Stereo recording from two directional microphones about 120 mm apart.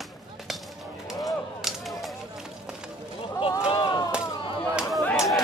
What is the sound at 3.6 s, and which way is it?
Chop, 45° left (ahead or behind).